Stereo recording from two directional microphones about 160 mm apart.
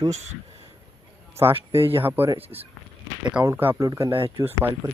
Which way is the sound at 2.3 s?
40° right (ahead or behind).